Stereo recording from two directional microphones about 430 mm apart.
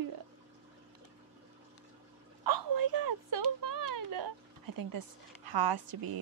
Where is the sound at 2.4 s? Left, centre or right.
Right.